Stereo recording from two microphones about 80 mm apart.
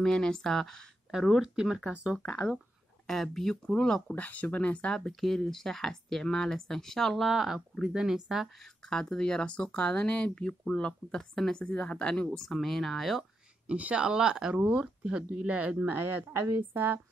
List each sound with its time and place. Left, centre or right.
0.0 s speech: centre
1.3 s speech: centre
2.1 s speech: centre
4.1 s speech: centre
8.8 s speech: centre
12.3 s speech: centre
13.7 s speech: centre